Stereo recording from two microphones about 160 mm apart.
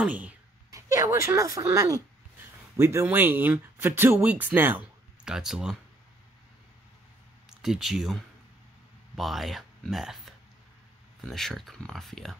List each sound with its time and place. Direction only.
0.0 s speech: 10° right (ahead or behind)
0.7 s speech: 20° right (ahead or behind); by 5.8 s centre (ahead or behind)
7.4 s speech: 5° right (ahead or behind)